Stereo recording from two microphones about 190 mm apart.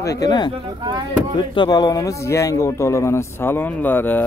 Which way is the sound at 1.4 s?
20° left (ahead or behind).